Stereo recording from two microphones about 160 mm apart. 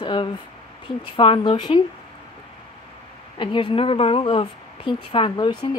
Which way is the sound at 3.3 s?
30° left (ahead or behind).